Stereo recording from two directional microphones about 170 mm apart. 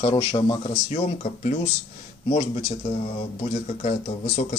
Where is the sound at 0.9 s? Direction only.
45° left (ahead or behind).